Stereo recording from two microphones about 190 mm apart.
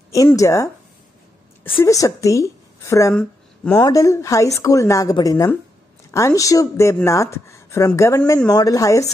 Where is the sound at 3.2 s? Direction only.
5° left (ahead or behind).